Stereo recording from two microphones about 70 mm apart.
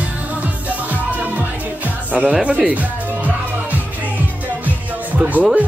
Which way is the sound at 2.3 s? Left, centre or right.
Centre.